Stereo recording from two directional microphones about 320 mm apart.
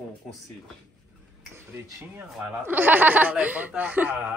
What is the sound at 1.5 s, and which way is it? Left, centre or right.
Speech, centre.